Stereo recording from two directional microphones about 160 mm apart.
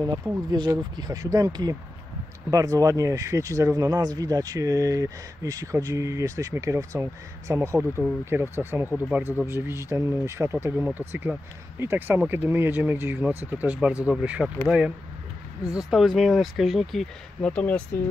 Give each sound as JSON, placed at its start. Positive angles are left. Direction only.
{"t": 0.0, "sound": "speech", "side_deg": -25}
{"t": 15.6, "sound": "speech", "side_deg": 20}
{"t": 15.9, "sound": "speech", "side_deg": 0}